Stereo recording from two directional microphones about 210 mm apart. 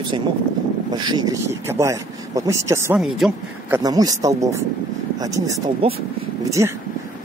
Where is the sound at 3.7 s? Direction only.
15° right (ahead or behind).